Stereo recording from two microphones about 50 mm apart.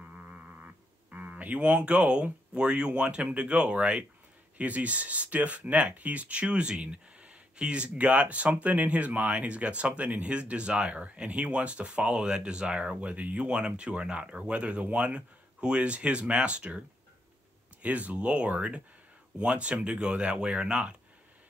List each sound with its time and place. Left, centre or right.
0.0 s a sound: right
1.1 s speech: right
17.8 s speech: right